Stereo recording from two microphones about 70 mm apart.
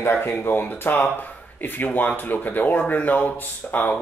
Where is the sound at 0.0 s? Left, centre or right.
Left.